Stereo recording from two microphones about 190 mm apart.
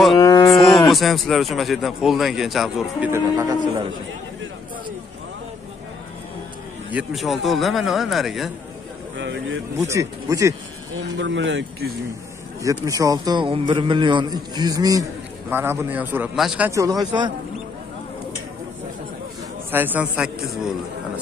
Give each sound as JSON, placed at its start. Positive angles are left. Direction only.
{"t": 0.2, "sound": "cattle", "side_deg": 20}
{"t": 0.7, "sound": "a man's voice", "side_deg": 0}
{"t": 3.1, "sound": "speech", "side_deg": -15}
{"t": 6.9, "sound": "a man's voice", "side_deg": -5}
{"t": 9.1, "sound": "speech", "side_deg": -70}
{"t": 9.8, "sound": "speech", "side_deg": -15}
{"t": 11.1, "sound": "speech", "side_deg": -75}
{"t": 12.6, "sound": "a man's voice", "side_deg": -15}
{"t": 19.7, "sound": "speech", "side_deg": -10}